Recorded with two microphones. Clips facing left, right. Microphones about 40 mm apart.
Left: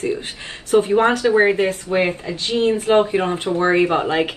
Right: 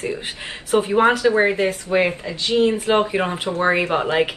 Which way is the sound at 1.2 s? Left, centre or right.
Centre.